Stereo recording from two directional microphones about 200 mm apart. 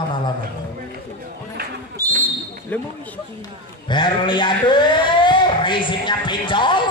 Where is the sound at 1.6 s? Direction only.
50° right (ahead or behind).